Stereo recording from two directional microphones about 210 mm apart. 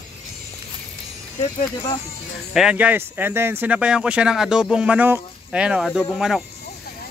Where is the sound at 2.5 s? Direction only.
5° right (ahead or behind).